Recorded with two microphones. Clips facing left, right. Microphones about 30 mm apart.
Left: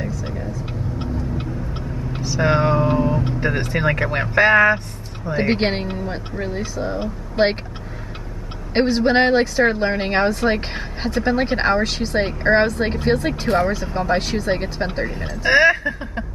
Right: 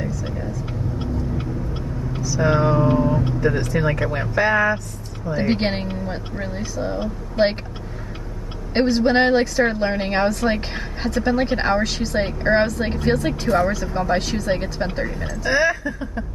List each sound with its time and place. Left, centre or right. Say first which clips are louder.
0.0 s vehicle: even; centre
0.9 s vehicle: even; left
3.3 s speech: right 1 dB; left
5.3 s speech: left 2 dB; left
8.7 s speech: left 1 dB; centre
15.1 s speech: left 5 dB; left